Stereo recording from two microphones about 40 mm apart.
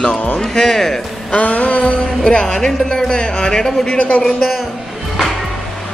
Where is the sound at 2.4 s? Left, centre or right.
Centre.